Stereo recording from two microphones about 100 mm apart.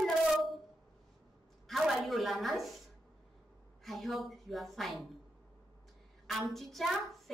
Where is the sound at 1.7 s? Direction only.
Centre (ahead or behind).